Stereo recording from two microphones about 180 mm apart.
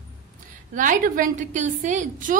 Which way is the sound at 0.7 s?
50° right (ahead or behind).